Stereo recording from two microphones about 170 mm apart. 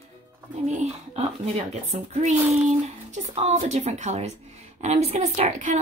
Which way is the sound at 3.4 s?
40° right (ahead or behind).